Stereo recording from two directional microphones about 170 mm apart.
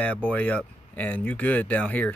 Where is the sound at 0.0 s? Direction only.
10° left (ahead or behind).